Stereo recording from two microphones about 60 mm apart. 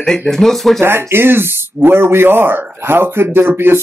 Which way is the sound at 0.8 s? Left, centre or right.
Right.